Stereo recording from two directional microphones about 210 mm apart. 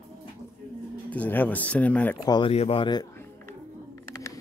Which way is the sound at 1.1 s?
10° left (ahead or behind).